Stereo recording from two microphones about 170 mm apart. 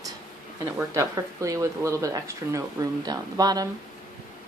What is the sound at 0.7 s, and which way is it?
Speech, 15° right (ahead or behind).